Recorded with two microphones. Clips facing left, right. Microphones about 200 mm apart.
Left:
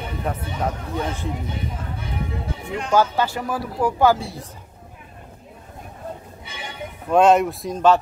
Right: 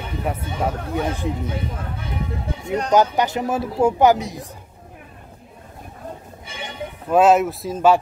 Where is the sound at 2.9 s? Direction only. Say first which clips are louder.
Right 1 dB; 20° right (ahead or behind).